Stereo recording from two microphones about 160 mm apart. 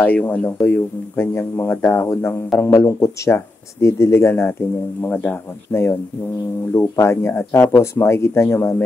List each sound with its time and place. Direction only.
0.0 s speech: 10° left (ahead or behind)